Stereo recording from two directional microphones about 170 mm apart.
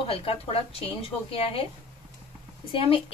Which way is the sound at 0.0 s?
35° left (ahead or behind).